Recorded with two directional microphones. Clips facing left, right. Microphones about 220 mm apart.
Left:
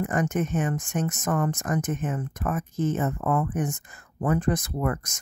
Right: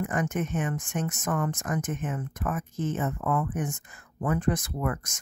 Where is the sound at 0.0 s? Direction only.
40° left (ahead or behind).